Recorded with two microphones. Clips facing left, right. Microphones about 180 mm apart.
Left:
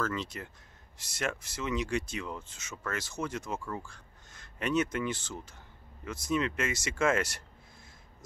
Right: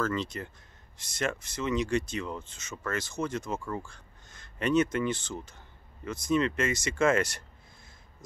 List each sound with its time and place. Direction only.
0.0 s speech: 5° left (ahead or behind)